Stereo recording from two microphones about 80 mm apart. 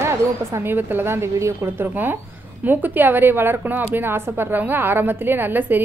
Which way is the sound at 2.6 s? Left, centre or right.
Right.